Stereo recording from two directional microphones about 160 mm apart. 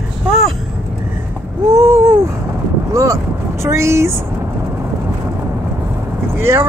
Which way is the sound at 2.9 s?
20° right (ahead or behind).